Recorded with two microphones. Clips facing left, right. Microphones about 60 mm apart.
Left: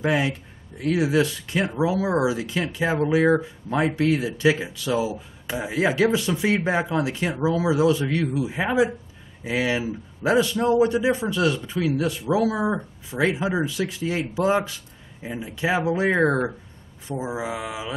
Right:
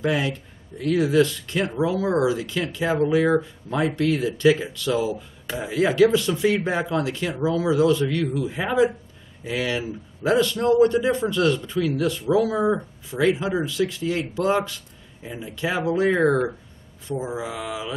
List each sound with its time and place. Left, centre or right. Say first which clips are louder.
0.0 s a man's voice: left 1 dB; centre